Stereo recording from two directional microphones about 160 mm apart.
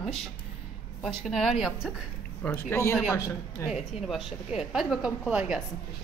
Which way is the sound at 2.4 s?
15° left (ahead or behind).